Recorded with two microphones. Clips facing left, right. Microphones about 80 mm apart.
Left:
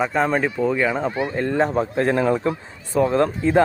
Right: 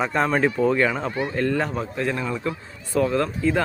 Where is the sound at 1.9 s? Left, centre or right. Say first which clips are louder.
Left 6 dB; left.